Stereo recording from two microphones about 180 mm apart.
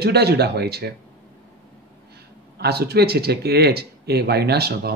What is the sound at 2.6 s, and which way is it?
Speech, 65° right (ahead or behind).